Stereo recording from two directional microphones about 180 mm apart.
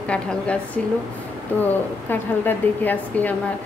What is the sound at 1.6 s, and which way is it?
A woman's voice, 10° left (ahead or behind).